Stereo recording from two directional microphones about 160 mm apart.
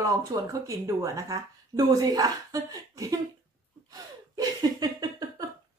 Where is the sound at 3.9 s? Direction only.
25° right (ahead or behind).